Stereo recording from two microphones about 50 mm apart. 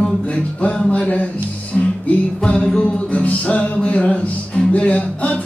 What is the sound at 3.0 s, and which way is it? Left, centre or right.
Music, left.